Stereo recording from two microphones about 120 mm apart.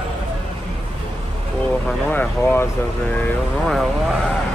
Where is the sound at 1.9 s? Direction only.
15° left (ahead or behind).